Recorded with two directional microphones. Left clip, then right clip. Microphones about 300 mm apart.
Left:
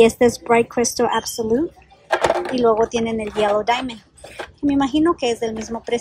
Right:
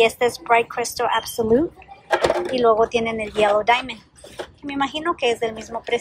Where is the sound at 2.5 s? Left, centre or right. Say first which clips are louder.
Right 3 dB; centre.